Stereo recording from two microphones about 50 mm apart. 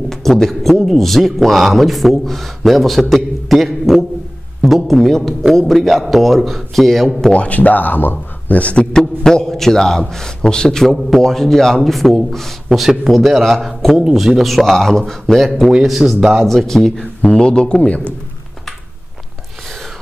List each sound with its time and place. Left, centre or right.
0.1 s a sound: centre
0.9 s a man's voice: centre
7.3 s speech: left
8.5 s speech: left
8.9 s a man's voice: centre
15.7 s a man's voice: centre
16.4 s a man's voice: centre
17.2 s speech: left